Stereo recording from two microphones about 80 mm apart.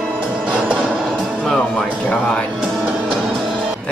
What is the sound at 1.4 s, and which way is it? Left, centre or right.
Music, centre.